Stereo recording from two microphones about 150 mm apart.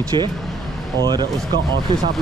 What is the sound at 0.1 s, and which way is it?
Speech, 30° right (ahead or behind).